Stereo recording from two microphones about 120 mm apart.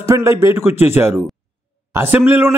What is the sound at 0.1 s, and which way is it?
A man's voice, 25° right (ahead or behind).